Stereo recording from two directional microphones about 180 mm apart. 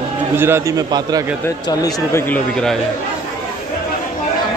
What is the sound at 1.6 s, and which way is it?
Speech, 20° left (ahead or behind).